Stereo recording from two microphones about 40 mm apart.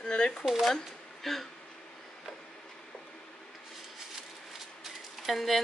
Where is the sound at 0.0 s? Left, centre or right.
Left.